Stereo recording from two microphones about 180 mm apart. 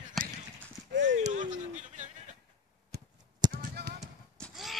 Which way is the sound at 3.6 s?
60° right (ahead or behind).